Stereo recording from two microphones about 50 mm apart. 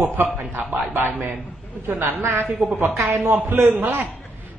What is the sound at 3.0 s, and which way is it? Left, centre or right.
Speech, right.